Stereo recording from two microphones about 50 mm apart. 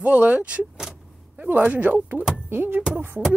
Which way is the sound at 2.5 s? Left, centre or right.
Right.